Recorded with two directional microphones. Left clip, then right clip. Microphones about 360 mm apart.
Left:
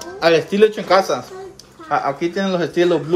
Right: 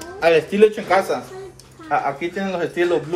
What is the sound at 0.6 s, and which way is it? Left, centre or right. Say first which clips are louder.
Speech: left 2 dB; left.